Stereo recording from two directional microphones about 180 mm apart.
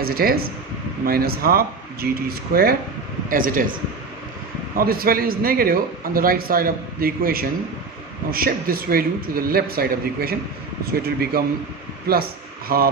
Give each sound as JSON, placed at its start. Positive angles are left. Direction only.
{"t": 0.0, "sound": "a man's voice", "side_deg": -55}
{"t": 4.7, "sound": "a man's voice", "side_deg": -55}